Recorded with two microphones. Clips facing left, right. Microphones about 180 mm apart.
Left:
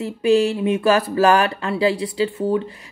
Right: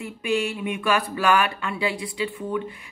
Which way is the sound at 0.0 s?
35° left (ahead or behind).